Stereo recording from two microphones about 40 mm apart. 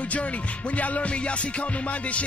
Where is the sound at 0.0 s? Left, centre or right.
Left.